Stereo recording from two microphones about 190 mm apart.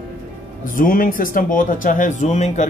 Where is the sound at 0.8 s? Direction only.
45° left (ahead or behind).